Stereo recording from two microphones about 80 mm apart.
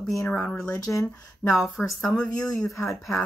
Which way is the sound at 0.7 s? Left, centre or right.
Left.